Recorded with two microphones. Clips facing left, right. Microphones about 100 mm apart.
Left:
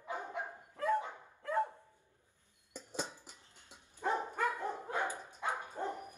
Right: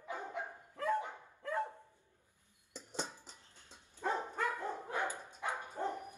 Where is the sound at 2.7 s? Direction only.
15° left (ahead or behind).